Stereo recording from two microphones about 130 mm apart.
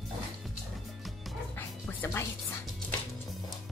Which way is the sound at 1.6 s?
15° left (ahead or behind).